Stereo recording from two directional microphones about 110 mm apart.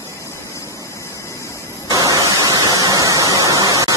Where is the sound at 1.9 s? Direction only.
35° right (ahead or behind).